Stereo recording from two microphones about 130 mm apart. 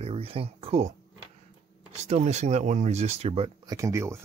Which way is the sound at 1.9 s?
60° right (ahead or behind).